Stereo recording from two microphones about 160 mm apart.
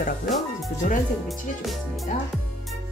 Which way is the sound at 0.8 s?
50° left (ahead or behind).